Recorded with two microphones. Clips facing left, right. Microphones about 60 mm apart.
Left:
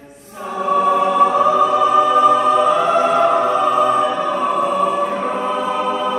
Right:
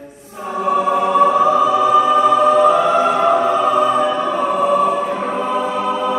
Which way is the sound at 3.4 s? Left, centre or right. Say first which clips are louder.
Even; left.